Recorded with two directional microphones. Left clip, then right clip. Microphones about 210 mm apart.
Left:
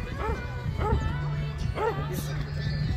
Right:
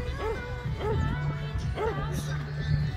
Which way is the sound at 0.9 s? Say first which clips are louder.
Even; 55° left (ahead or behind).